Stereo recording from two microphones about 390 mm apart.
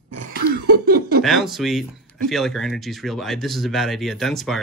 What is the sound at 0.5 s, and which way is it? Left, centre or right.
Cough, right.